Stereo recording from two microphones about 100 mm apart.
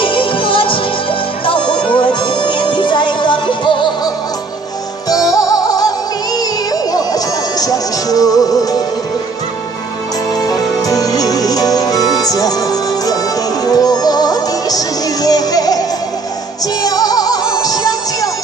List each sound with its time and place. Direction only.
0.0 s music: 60° left (ahead or behind)
5.1 s music: 35° left (ahead or behind)
10.3 s music: 40° left (ahead or behind)